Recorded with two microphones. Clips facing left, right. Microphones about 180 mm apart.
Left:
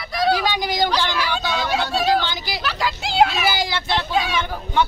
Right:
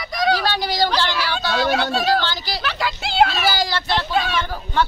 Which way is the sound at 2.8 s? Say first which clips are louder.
Even; 5° left (ahead or behind).